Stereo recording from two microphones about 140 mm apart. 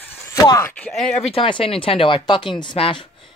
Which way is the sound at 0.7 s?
5° left (ahead or behind).